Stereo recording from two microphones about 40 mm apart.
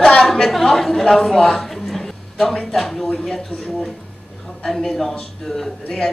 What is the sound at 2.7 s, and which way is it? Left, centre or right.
Speech, centre.